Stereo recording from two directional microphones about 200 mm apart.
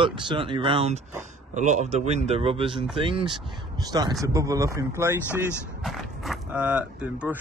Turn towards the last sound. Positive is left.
turn(degrees=-5)  # may be behind; listen again after turning